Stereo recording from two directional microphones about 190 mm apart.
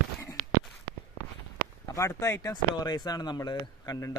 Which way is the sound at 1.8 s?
15° left (ahead or behind).